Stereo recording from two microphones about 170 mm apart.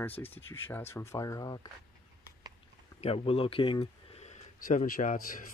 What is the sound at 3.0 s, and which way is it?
Speech, 35° left (ahead or behind).